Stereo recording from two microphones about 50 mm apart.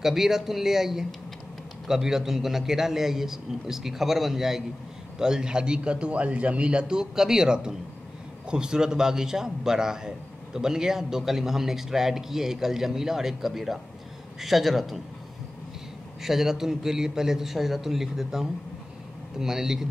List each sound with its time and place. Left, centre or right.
0.0 s a man's voice: centre
16.2 s a man's voice: centre